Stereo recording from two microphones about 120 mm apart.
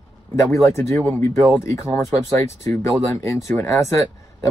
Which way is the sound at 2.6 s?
25° left (ahead or behind).